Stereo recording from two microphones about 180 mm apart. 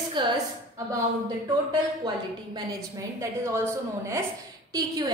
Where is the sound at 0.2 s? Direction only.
25° right (ahead or behind).